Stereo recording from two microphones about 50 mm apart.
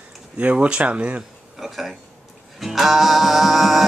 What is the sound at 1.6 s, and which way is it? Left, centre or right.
Speech, centre.